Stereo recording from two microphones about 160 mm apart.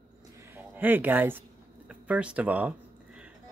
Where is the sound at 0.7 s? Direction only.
10° right (ahead or behind).